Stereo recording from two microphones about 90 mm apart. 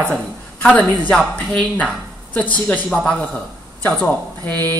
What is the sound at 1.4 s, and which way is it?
Speech, 15° left (ahead or behind).